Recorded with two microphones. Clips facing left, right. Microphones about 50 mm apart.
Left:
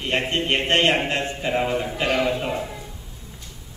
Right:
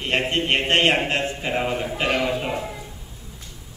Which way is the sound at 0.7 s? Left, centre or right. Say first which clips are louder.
Even; centre.